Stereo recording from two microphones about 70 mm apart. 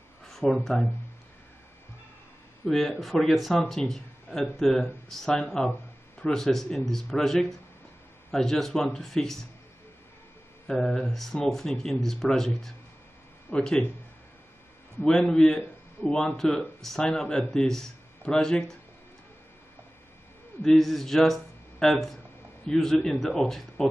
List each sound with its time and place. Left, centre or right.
0.3 s a sound: centre
2.6 s speech: centre
10.7 s speech: centre
15.0 s speech: centre
20.6 s speech: centre